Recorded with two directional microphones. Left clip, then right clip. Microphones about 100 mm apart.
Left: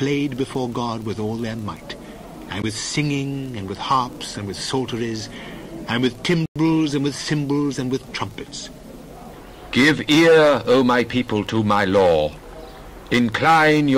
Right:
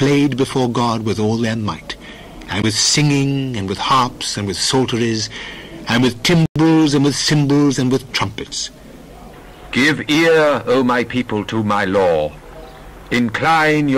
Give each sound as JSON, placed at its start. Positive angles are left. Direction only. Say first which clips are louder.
{"t": 0.0, "sound": "speech", "louder": "right 7 dB", "side_deg": 30}
{"t": 9.7, "sound": "a man's voice", "louder": "right 1 dB", "side_deg": -5}